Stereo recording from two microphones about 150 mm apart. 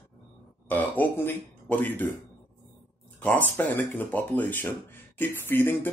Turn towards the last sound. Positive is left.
turn(degrees=15)  # may be behind; listen again after turning